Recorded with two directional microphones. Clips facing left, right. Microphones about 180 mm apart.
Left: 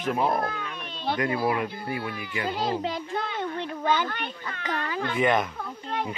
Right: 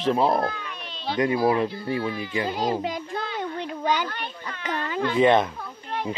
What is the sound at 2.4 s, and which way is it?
Children playing, 15° right (ahead or behind).